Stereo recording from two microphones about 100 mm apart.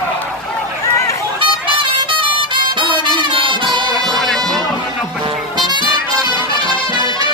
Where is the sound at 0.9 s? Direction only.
30° left (ahead or behind).